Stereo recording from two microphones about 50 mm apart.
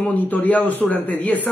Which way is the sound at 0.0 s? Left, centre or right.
Left.